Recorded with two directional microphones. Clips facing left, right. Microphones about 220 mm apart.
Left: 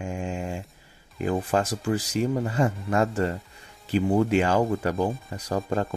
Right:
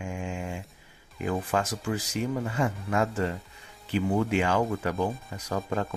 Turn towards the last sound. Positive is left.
turn(degrees=35)  # may be behind; listen again after turning